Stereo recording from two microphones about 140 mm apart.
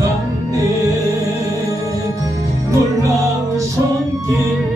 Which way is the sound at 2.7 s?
20° right (ahead or behind).